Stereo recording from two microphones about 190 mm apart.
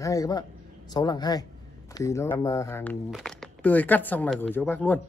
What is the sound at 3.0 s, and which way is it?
A man's voice, centre (ahead or behind).